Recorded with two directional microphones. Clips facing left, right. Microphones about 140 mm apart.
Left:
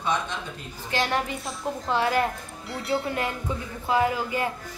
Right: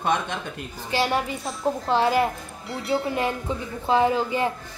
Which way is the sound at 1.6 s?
25° right (ahead or behind).